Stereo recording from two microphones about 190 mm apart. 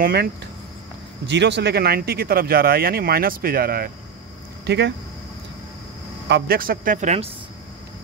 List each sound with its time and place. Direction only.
0.0 s speech: 55° right (ahead or behind)
1.2 s speech: 65° right (ahead or behind); by 3.9 s 50° right (ahead or behind)
4.6 s speech: 65° right (ahead or behind)
6.2 s speech: 60° right (ahead or behind); by 7.2 s 40° right (ahead or behind)